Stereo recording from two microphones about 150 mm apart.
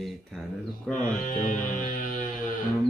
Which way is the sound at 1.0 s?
65° left (ahead or behind).